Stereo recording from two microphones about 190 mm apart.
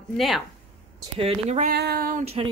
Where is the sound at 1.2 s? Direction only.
35° right (ahead or behind).